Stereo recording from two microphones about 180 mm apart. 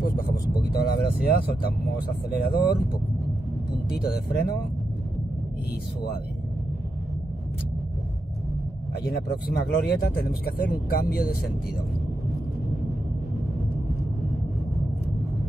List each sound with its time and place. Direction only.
0.6 s speech: 60° left (ahead or behind)
3.9 s speech: 60° left (ahead or behind)
9.0 s speech: 60° left (ahead or behind)